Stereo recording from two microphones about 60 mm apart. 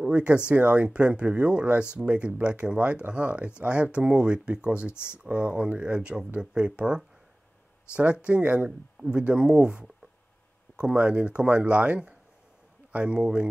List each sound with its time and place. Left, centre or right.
0.0 s speech: right